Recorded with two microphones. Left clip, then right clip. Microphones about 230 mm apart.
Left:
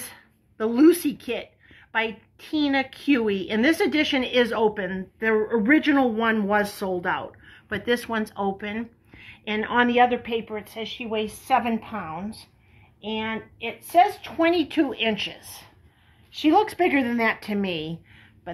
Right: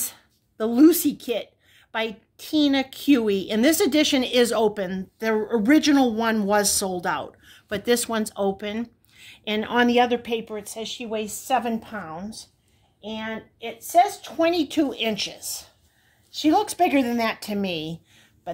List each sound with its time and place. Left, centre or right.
0.0 s speech: right
11.6 s speech: right
14.2 s speech: right